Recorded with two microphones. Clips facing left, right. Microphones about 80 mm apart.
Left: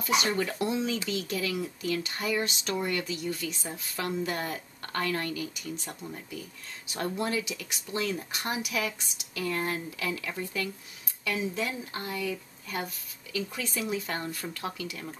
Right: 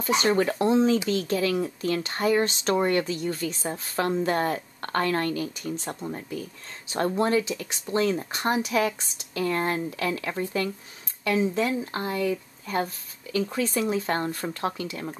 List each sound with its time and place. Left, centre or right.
0.0 s speech: right
11.8 s speech: right